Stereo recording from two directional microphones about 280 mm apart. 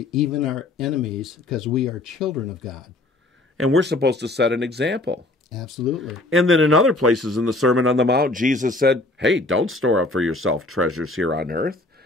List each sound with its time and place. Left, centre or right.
0.1 s speech: centre
3.5 s speech: right
5.5 s speech: centre
6.3 s speech: right